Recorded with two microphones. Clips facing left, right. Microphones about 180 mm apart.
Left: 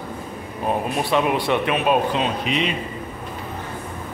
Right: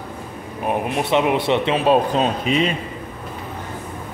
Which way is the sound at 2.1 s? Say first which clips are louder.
Right 4 dB; 40° right (ahead or behind).